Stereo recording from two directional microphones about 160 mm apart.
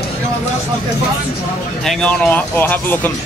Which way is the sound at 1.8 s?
5° left (ahead or behind).